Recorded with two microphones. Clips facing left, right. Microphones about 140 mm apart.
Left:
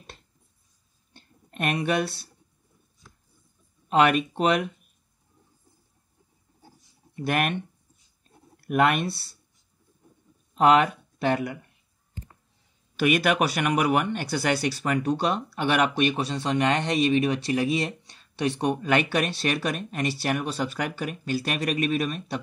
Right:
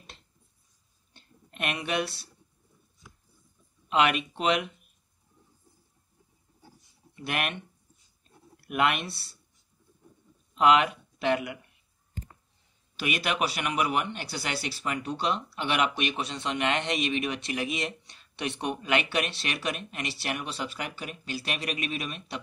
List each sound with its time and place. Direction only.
1.1 s a sound: 40° left (ahead or behind)
3.9 s speech: 40° left (ahead or behind)
7.2 s speech: 40° left (ahead or behind)
8.6 s speech: 40° left (ahead or behind)
10.5 s speech: 40° left (ahead or behind)
12.9 s speech: 50° left (ahead or behind)